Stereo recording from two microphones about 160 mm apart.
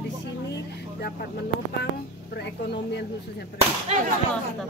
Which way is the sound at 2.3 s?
90° left.